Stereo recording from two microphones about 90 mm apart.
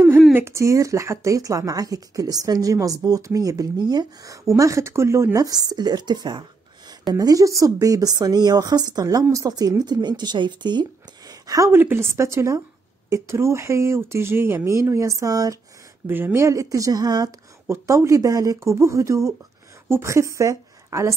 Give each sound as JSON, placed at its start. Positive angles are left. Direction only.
{"t": 0.3, "sound": "speech", "side_deg": -30}
{"t": 4.6, "sound": "speech", "side_deg": -35}
{"t": 7.2, "sound": "speech", "side_deg": -40}
{"t": 11.7, "sound": "speech", "side_deg": -25}
{"t": 16.1, "sound": "speech", "side_deg": -20}
{"t": 16.4, "sound": "speech", "side_deg": -40}
{"t": 17.6, "sound": "a woman's voice", "side_deg": -35}